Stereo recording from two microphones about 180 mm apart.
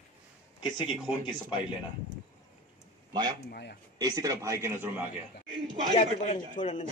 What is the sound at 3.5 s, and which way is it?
Speech, 60° left (ahead or behind).